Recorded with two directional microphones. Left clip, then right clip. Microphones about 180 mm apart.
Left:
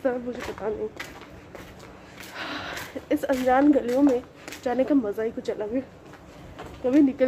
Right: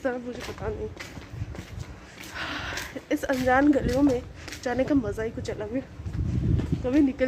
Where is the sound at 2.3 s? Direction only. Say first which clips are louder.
Right 1 dB; centre (ahead or behind).